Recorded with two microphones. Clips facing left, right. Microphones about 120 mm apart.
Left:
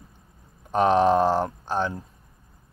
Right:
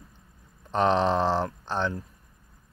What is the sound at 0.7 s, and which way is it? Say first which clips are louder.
Speech: left 4 dB; 10° left (ahead or behind).